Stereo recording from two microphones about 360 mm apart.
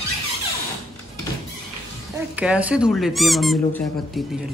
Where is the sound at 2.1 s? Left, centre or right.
Centre.